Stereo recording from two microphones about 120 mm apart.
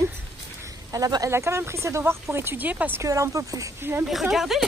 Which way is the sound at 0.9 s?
30° right (ahead or behind).